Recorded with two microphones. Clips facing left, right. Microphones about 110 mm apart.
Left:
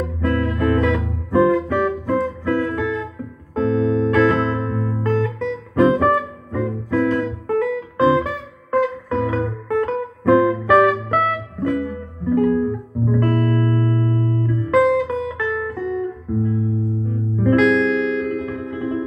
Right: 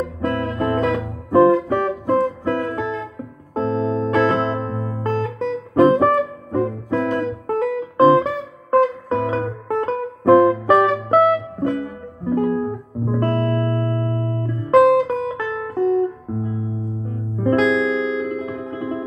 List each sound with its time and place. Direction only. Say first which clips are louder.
0.2 s music: left 2 dB; 30° right (ahead or behind)